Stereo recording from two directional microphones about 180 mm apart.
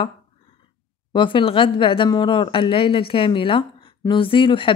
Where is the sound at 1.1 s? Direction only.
30° left (ahead or behind).